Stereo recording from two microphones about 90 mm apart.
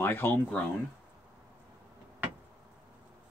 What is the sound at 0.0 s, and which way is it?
Speech, 25° left (ahead or behind).